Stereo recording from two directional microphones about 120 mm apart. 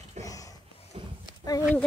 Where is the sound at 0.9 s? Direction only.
50° right (ahead or behind).